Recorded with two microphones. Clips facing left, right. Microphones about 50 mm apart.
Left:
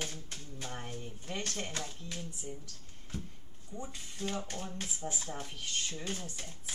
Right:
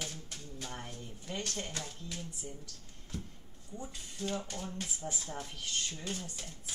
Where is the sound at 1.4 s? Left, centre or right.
Left.